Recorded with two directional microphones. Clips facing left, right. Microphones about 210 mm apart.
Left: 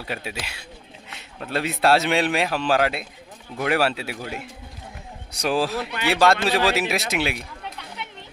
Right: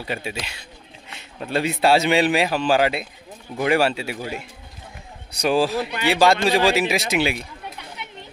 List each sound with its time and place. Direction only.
0.0 s speech: centre (ahead or behind)